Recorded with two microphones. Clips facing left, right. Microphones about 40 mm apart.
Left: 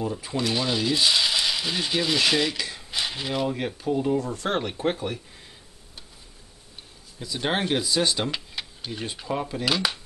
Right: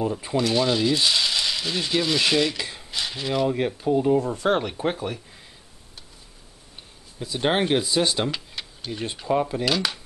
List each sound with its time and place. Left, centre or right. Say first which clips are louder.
0.4 s speech: right 4 dB; centre
2.5 s speech: even; centre
2.9 s a sound: right 2 dB; centre
3.4 s speech: right 4 dB; centre
4.2 s speech: right 4 dB; right
4.5 s speech: right 2 dB; centre
7.2 s speech: right 4 dB; centre
8.3 s tick-tock: right 1 dB; centre
9.2 s speech: right 7 dB; centre
9.7 s speech: right 1 dB; centre